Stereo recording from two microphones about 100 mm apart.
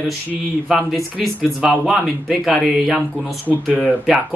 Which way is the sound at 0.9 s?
Centre (ahead or behind).